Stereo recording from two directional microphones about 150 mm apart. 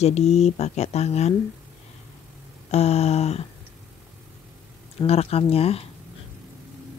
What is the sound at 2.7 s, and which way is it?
Speech, 45° left (ahead or behind).